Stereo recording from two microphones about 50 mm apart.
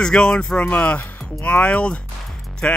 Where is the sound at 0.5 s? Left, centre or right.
Left.